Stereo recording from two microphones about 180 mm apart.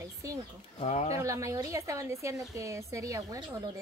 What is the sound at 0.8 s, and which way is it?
Speech, 35° left (ahead or behind).